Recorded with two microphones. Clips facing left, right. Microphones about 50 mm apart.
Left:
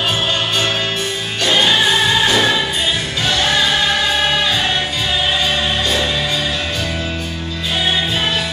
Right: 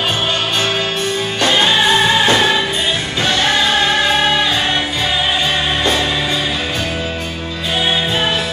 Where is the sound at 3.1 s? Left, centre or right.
Right.